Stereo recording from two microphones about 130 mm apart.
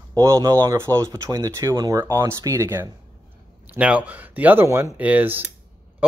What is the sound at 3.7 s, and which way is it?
Speech, 10° right (ahead or behind).